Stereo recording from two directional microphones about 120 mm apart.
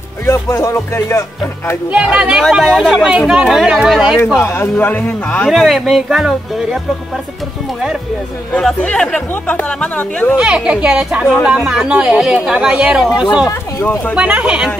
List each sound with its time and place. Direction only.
0.3 s speech: 20° left (ahead or behind)
1.9 s speech: 5° right (ahead or behind)
4.4 s speech: 20° left (ahead or behind)
5.5 s speech: centre (ahead or behind)
8.5 s speech: 5° left (ahead or behind)
10.3 s speech: 5° right (ahead or behind)
13.5 s speech: 20° left (ahead or behind)
14.1 s speech: 10° right (ahead or behind)